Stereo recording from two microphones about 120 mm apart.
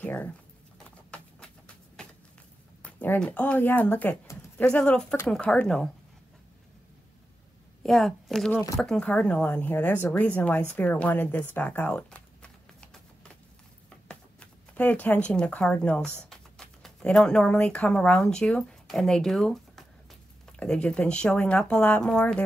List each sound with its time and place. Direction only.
0.0 s typing: 15° left (ahead or behind)
0.8 s clip-clop: 10° left (ahead or behind)
2.8 s speech: 10° left (ahead or behind)
4.3 s a sound: 25° left (ahead or behind)
4.6 s speech: 10° left (ahead or behind)
7.8 s a woman's voice: centre (ahead or behind)